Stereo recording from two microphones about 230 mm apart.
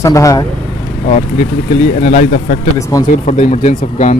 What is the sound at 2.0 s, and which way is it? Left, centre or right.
Speech, left.